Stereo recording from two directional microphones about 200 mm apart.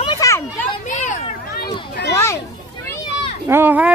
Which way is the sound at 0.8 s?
35° left (ahead or behind).